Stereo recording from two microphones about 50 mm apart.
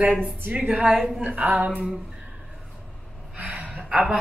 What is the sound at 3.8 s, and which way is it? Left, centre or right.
Speech, centre.